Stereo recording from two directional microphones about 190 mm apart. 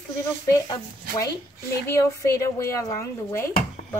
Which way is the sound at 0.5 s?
20° left (ahead or behind).